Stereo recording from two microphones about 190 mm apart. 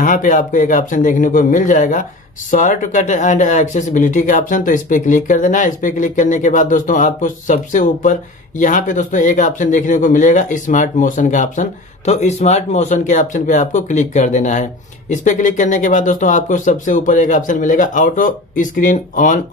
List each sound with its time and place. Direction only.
0.0 s speech: 45° left (ahead or behind)